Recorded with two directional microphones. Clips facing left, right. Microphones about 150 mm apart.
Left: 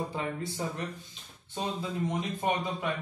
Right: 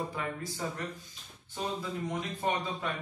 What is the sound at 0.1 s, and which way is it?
Speech, 25° left (ahead or behind).